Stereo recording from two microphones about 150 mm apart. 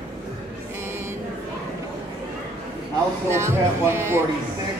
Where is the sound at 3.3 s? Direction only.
15° right (ahead or behind).